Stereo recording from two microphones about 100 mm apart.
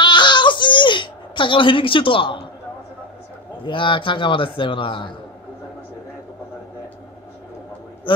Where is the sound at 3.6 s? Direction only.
60° left (ahead or behind).